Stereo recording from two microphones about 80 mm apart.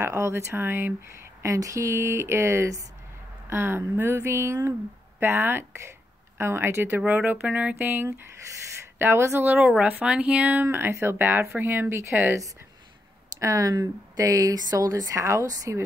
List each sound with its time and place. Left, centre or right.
0.0 s speech: right
1.4 s speech: right
9.6 s speech: centre; by 12.4 s right
13.4 s speech: right